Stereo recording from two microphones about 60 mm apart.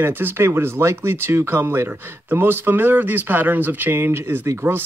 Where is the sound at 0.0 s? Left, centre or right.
Right.